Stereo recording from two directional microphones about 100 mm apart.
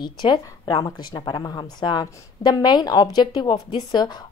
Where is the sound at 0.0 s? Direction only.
45° left (ahead or behind).